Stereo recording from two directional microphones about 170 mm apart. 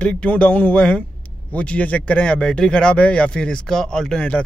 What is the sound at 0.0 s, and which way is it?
Speech, 5° left (ahead or behind).